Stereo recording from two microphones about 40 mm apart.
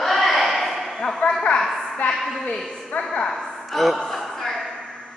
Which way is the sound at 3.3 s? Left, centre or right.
Centre.